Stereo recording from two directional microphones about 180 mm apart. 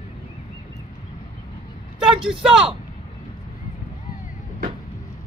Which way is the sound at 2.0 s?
5° right (ahead or behind).